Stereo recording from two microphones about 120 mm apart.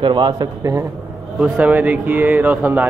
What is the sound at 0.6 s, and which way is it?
Speech, 25° right (ahead or behind).